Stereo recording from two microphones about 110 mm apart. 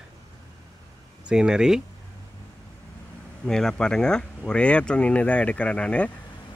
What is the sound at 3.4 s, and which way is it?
Speech, 5° left (ahead or behind).